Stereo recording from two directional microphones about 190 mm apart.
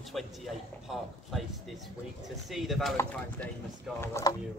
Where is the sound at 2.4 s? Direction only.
Centre (ahead or behind).